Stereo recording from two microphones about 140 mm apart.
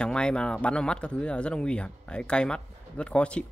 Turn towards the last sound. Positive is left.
turn(degrees=10)  # may be behind; listen again after turning